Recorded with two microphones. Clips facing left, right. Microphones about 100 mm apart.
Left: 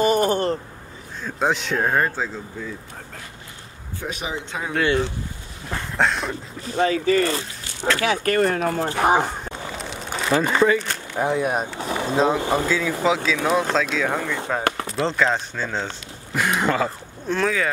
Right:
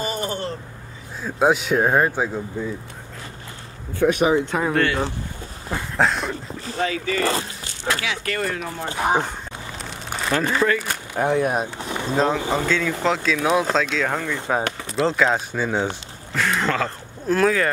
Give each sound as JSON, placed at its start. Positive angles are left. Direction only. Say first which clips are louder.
{"t": 0.0, "sound": "a sound", "louder": "left 8 dB", "side_deg": 50}
{"t": 1.2, "sound": "speech", "louder": "right 4 dB", "side_deg": -10}
{"t": 4.0, "sound": "speech", "louder": "right 12 dB", "side_deg": -60}
{"t": 5.7, "sound": "speech", "louder": "right 1 dB", "side_deg": 0}
{"t": 6.8, "sound": "speech", "louder": "left 5 dB", "side_deg": 35}
{"t": 7.2, "sound": "speech", "louder": "left 1 dB", "side_deg": -40}
{"t": 8.0, "sound": "speech", "louder": "left 6 dB", "side_deg": 45}
{"t": 8.7, "sound": "speech", "louder": "left 4 dB", "side_deg": 60}
{"t": 9.8, "sound": "crumpling", "louder": "right 1 dB", "side_deg": 0}
{"t": 10.8, "sound": "speech", "louder": "right 1 dB", "side_deg": -5}
{"t": 15.0, "sound": "speech", "louder": "right 2 dB", "side_deg": -5}
{"t": 16.3, "sound": "speech", "louder": "left 1 dB", "side_deg": 15}
{"t": 17.3, "sound": "speech", "louder": "right 3 dB", "side_deg": 0}